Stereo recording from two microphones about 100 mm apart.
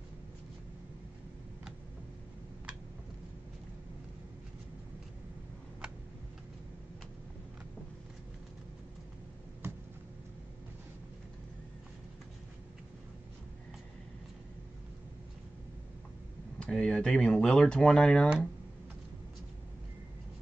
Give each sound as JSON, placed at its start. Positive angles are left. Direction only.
{"t": 16.5, "sound": "speech", "side_deg": 5}